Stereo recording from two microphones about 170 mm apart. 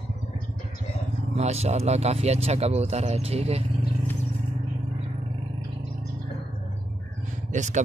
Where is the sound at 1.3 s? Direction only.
40° right (ahead or behind).